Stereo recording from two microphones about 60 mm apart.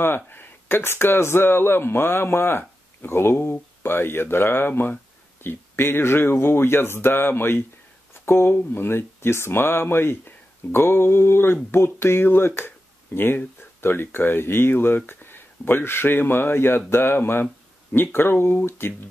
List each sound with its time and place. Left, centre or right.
0.0 s speech: left